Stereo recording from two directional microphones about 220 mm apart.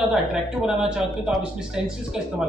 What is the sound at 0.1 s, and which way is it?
Speech, 5° right (ahead or behind).